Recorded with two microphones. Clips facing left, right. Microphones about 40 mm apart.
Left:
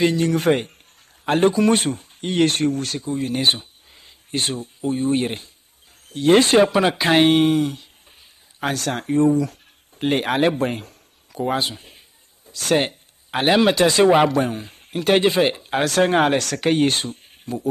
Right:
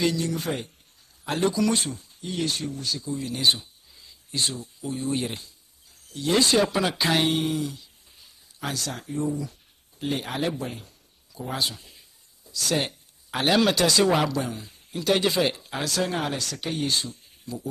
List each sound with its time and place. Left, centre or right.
0.0 s speech: left
0.3 s speech: left
1.2 s speech: left
11.5 s speech: left